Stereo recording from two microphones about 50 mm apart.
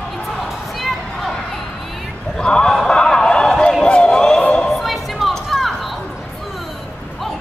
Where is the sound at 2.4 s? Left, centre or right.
Centre.